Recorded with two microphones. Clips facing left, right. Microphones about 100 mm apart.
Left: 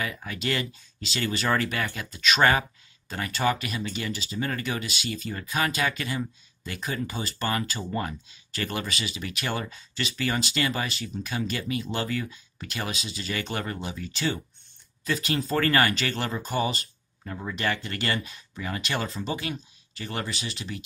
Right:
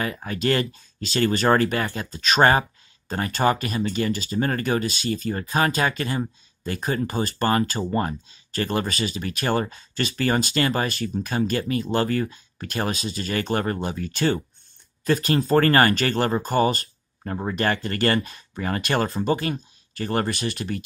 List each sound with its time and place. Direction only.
0.0 s speech: 40° right (ahead or behind)